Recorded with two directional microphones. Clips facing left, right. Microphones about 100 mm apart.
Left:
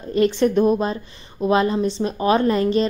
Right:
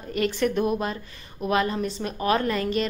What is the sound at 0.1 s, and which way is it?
Speech, 25° left (ahead or behind).